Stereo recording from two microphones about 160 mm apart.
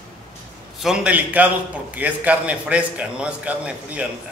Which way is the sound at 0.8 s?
5° right (ahead or behind).